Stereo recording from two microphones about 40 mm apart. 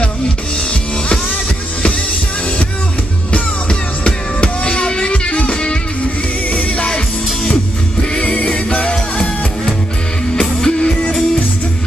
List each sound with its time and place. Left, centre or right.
3.3 s music: left
8.1 s music: left